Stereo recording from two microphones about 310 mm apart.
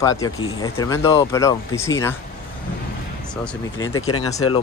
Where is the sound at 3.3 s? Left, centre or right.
Centre.